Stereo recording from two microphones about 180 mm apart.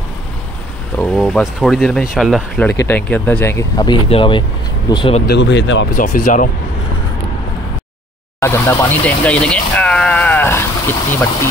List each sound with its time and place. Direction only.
0.9 s speech: 5° left (ahead or behind); by 5.2 s 25° left (ahead or behind)
5.2 s speech: 70° left (ahead or behind)
5.9 s speech: 50° left (ahead or behind)
8.4 s speech: 15° left (ahead or behind)